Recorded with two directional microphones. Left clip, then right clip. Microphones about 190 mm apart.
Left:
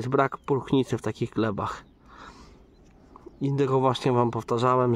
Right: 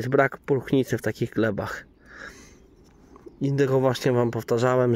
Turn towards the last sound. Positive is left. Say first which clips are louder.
# right 1 dB
turn(degrees=0)  # may be behind; listen again after turning